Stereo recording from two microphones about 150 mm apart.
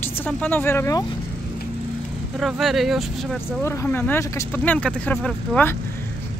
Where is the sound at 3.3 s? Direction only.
20° left (ahead or behind).